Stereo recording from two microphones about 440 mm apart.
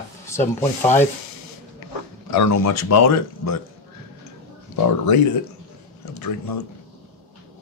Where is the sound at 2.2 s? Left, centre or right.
Left.